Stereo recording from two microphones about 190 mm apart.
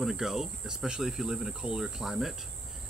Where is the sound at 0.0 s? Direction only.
Centre (ahead or behind).